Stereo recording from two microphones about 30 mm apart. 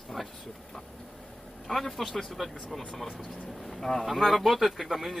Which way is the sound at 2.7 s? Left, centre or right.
Centre.